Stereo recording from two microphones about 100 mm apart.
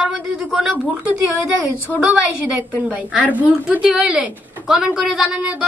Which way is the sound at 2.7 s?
15° right (ahead or behind).